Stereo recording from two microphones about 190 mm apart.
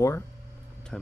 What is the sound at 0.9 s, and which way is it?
Speech, 5° left (ahead or behind).